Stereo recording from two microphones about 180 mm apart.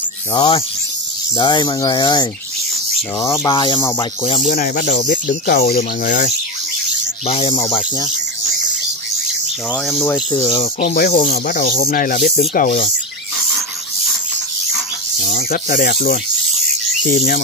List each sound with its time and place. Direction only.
0.3 s speech: 25° left (ahead or behind); by 6.3 s 50° left (ahead or behind)
7.2 s speech: 35° left (ahead or behind)
10.4 s speech: 35° left (ahead or behind)
11.1 s speech: 50° left (ahead or behind)
15.1 s speech: 50° left (ahead or behind)